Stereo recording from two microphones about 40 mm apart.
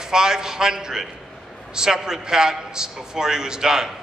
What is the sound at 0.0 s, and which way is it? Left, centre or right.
A man's voice, centre.